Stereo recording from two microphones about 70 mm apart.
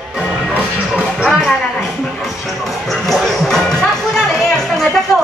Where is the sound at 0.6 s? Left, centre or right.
Right.